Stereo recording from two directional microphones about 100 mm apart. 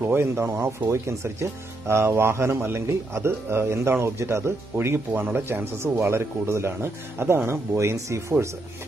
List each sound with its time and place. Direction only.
0.0 s speech: 25° right (ahead or behind)